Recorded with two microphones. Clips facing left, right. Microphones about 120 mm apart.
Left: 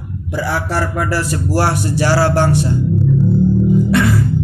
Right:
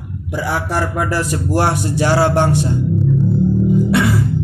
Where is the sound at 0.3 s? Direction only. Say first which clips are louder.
Left 1 dB; 15° right (ahead or behind).